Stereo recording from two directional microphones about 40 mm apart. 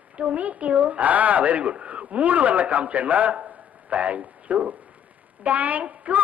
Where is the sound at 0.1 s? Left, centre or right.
Right.